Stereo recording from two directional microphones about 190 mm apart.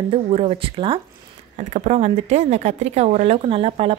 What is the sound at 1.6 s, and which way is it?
A woman's voice, 40° right (ahead or behind).